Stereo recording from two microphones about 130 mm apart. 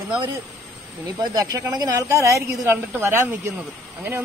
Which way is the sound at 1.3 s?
30° right (ahead or behind).